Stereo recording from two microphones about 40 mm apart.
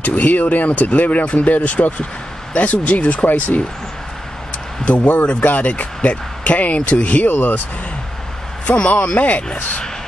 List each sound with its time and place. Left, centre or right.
0.0 s speech: left
4.8 s speech: left
8.6 s speech: left
9.5 s speech: left